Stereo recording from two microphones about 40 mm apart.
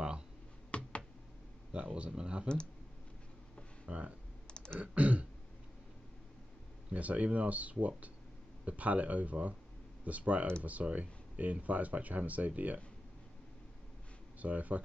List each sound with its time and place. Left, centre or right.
0.7 s computer keyboard: left
1.7 s speech: right
3.9 s speech: right
4.5 s typing: left
4.7 s throat clearing: right
6.9 s speech: right
14.4 s speech: right